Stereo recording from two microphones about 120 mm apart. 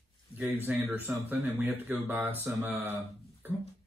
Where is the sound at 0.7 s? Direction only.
15° right (ahead or behind).